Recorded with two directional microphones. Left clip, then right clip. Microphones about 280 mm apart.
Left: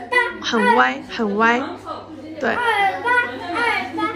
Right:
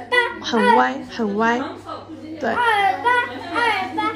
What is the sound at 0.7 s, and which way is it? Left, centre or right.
Speech, centre.